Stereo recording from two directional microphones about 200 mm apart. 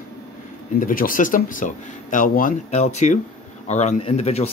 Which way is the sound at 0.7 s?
45° left (ahead or behind).